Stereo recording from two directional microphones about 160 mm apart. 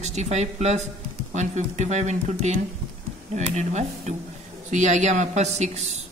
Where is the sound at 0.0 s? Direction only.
45° right (ahead or behind).